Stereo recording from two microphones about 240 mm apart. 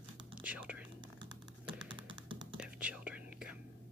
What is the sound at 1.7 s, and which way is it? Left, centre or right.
Computer keyboard, centre.